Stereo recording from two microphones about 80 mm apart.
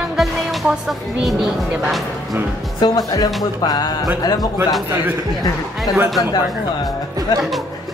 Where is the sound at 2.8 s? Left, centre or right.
Left.